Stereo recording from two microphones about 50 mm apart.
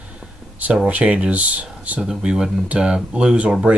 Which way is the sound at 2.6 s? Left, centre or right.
Centre.